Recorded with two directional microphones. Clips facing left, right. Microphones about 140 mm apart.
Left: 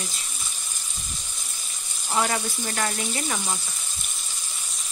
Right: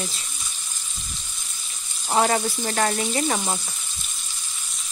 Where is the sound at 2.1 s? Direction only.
45° right (ahead or behind).